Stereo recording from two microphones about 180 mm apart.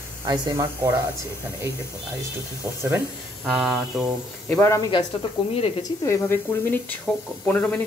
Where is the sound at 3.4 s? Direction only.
Centre (ahead or behind).